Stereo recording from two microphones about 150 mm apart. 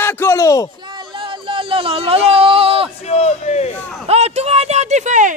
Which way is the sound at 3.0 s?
45° left (ahead or behind).